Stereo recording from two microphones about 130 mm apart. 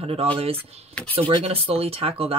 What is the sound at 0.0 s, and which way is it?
Speech, 50° right (ahead or behind).